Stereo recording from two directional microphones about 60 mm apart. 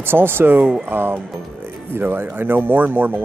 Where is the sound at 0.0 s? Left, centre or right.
Right.